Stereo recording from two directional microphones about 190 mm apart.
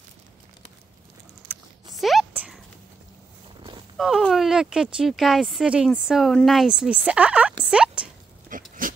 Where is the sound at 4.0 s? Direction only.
Centre (ahead or behind).